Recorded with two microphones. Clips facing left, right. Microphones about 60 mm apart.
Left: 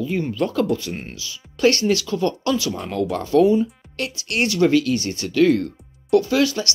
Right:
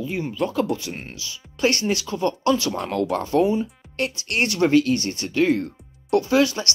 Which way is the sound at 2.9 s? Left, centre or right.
Right.